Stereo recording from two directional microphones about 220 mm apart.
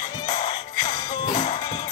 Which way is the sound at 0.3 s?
20° left (ahead or behind).